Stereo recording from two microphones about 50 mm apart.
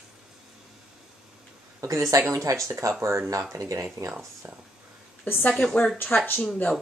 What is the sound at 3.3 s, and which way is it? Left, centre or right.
Speech, right.